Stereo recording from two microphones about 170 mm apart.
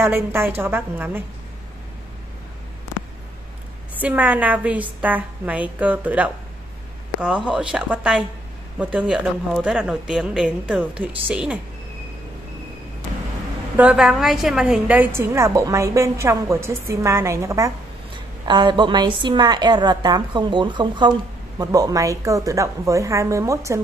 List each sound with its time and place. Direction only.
0.0 s speech: 15° right (ahead or behind)
4.0 s speech: 10° right (ahead or behind)
7.4 s speech: 5° right (ahead or behind)
13.7 s a woman's voice: 5° right (ahead or behind)